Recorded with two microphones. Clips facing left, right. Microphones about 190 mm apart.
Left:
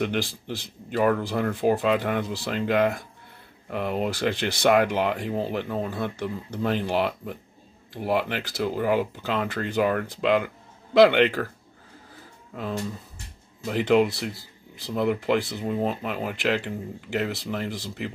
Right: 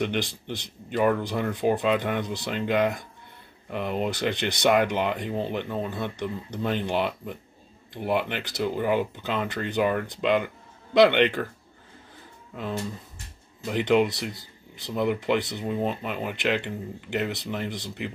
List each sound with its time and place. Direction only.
0.0 s speech: 5° left (ahead or behind)
13.7 s speech: centre (ahead or behind)